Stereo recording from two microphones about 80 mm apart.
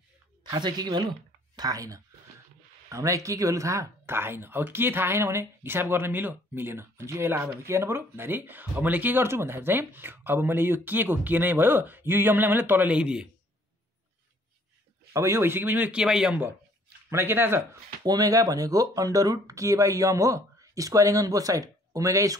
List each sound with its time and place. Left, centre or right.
0.4 s speech: right
1.6 s speech: right
4.0 s speech: right; by 13.3 s centre
15.1 s speech: right
16.0 s speech: centre
17.1 s speech: right
18.0 s speech: right